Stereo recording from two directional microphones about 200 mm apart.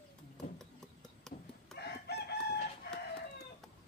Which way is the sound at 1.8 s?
55° left (ahead or behind).